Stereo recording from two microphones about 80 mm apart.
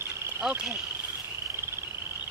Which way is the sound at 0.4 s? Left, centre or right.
Centre.